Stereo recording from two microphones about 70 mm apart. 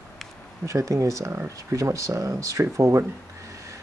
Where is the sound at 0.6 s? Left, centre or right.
Right.